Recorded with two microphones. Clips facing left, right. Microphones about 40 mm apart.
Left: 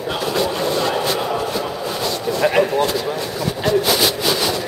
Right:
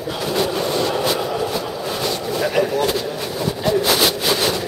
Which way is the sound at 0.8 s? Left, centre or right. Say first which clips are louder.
Even; centre.